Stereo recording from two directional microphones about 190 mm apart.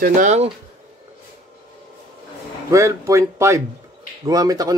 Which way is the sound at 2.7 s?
15° right (ahead or behind).